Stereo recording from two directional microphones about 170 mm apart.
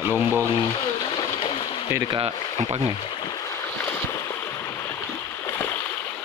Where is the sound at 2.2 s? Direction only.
30° right (ahead or behind).